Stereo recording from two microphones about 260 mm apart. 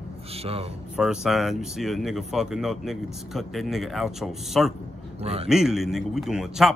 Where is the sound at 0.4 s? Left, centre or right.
Right.